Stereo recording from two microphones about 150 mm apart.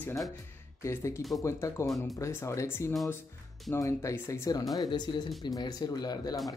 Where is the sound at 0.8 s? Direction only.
20° left (ahead or behind).